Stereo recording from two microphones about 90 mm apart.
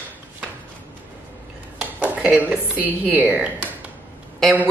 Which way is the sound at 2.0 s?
15° right (ahead or behind).